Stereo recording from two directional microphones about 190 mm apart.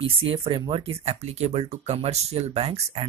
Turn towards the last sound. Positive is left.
turn(degrees=-30)  # may be behind; listen again after turning